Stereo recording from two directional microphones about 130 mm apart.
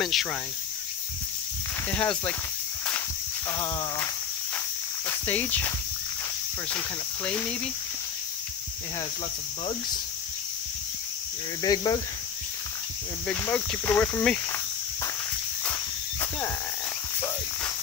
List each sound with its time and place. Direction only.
0.0 s speech: centre (ahead or behind)
1.9 s speech: 10° left (ahead or behind)
3.4 s speech: 20° left (ahead or behind)
7.2 s speech: 10° left (ahead or behind)
11.6 s speech: 30° left (ahead or behind)
13.3 s speech: 15° left (ahead or behind)
15.6 s cricket: 15° left (ahead or behind)